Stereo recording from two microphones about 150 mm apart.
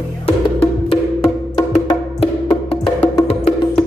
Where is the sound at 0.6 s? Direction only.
40° left (ahead or behind).